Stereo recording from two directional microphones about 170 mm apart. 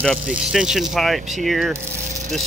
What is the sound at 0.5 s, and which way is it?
Speech, 5° right (ahead or behind).